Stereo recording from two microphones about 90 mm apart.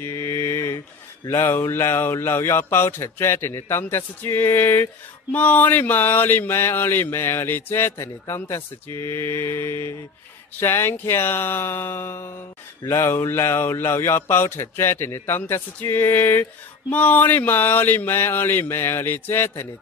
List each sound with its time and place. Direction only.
0.0 s mantra: 30° left (ahead or behind)
1.2 s speech: 35° left (ahead or behind)